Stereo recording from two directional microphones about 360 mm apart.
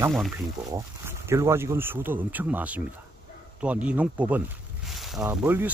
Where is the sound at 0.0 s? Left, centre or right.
Centre.